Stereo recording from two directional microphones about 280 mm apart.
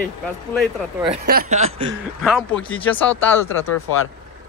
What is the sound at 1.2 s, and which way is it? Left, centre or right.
Speech, right.